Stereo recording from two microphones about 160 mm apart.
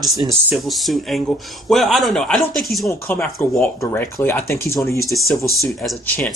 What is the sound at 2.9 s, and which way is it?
Speech, 15° left (ahead or behind).